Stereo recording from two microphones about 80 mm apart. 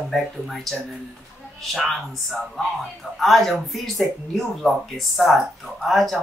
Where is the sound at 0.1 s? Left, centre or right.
Centre.